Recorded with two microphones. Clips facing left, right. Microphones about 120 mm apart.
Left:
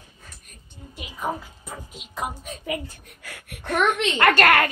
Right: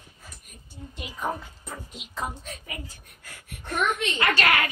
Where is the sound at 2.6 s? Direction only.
75° left (ahead or behind); by 4.7 s 50° left (ahead or behind).